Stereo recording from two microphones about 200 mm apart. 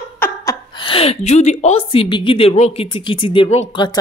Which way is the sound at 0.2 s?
10° left (ahead or behind).